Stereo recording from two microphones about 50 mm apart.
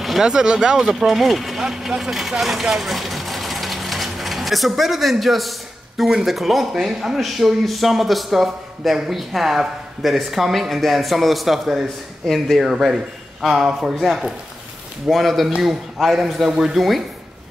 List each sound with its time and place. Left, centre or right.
0.0 s a sound: centre
0.3 s speech: centre
6.0 s speech: centre
6.3 s speech: centre
13.9 s speech: centre